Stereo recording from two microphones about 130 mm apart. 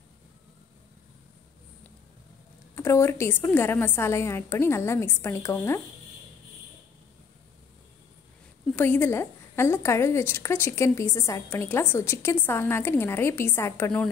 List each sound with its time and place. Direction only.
2.7 s a woman's voice: 20° left (ahead or behind)
8.7 s a woman's voice: 15° left (ahead or behind)